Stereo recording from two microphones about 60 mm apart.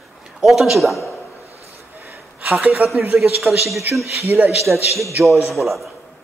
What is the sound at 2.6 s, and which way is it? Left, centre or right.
Speech, right.